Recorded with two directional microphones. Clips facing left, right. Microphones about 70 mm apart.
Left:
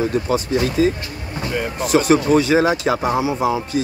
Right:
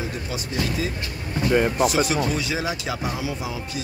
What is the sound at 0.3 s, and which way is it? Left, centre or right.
Speech, left.